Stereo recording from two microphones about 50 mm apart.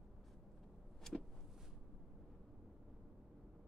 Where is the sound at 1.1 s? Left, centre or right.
Centre.